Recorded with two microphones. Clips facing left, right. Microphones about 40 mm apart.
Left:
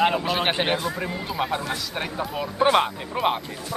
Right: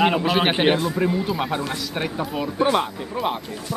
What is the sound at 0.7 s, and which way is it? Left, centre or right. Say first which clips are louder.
Speech: right 6 dB; centre.